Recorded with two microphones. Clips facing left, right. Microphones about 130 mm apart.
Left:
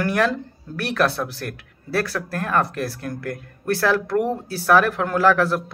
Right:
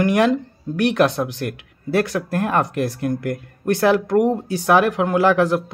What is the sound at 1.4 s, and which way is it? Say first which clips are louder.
Speech: right 6 dB; 20° right (ahead or behind).